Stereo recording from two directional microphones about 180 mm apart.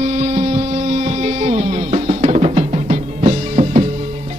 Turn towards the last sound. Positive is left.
turn(degrees=-40)  # may be behind; listen again after turning